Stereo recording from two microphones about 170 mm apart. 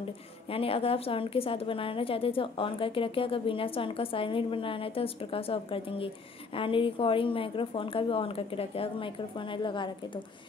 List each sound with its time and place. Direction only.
0.5 s a woman's voice: 35° left (ahead or behind)